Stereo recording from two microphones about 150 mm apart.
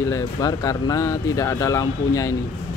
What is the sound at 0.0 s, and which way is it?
Speech, 20° left (ahead or behind).